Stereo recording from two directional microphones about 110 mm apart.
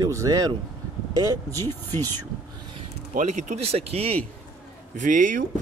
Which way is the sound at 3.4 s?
80° right.